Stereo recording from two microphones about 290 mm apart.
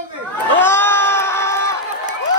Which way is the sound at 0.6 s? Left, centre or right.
Centre.